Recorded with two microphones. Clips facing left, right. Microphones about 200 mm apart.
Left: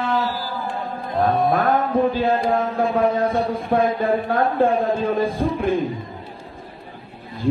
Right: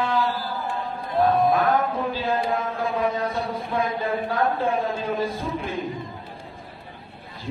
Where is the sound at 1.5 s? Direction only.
55° left (ahead or behind).